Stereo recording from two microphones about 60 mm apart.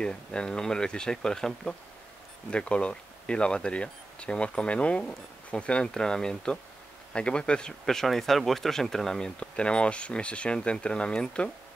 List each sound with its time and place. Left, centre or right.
0.0 s speech: centre
7.8 s speech: centre
9.4 s speech: centre